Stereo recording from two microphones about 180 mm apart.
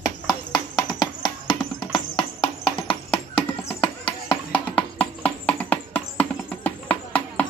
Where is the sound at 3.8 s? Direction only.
30° left (ahead or behind).